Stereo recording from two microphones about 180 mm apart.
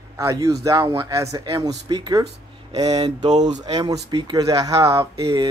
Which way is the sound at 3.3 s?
40° right (ahead or behind).